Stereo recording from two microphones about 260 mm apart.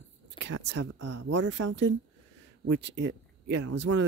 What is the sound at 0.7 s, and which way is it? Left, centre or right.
Speech, right.